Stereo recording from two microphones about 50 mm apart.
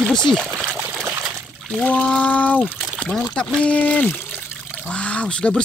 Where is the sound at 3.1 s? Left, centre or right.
Centre; by 4.8 s left.